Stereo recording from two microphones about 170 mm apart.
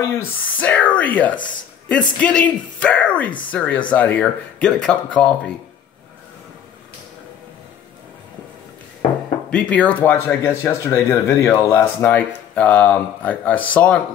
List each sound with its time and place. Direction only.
0.2 s speech: 10° left (ahead or behind)
9.5 s speech: 10° left (ahead or behind)